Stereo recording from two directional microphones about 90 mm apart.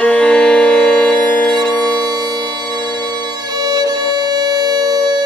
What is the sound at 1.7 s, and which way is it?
Bagpipes, 15° left (ahead or behind).